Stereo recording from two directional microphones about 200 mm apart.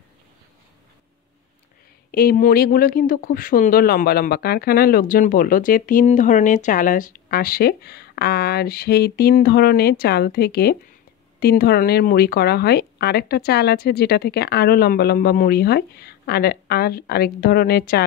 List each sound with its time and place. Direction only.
2.0 s speech: 50° left (ahead or behind)